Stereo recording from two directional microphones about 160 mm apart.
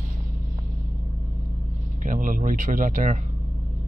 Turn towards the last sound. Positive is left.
turn(degrees=-55)  # may be behind; listen again after turning